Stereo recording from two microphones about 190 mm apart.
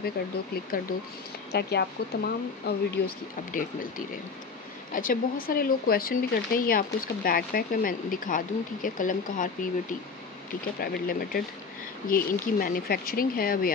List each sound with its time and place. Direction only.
0.7 s speech: 50° left (ahead or behind)
1.5 s speech: 60° left (ahead or behind)
4.9 s speech: 45° left (ahead or behind)
10.8 s speech: 50° left (ahead or behind)